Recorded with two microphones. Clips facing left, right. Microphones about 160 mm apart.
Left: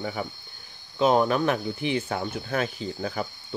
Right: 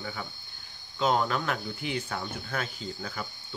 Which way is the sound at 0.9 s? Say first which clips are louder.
Left 6 dB; 20° left (ahead or behind).